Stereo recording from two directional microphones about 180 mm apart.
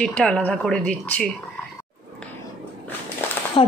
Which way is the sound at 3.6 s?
30° left (ahead or behind).